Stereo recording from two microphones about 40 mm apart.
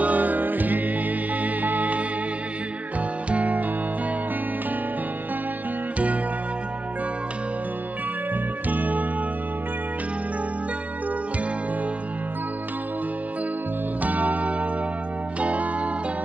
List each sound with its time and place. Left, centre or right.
0.0 s music: right
3.3 s music: right
8.6 s music: right
14.0 s music: right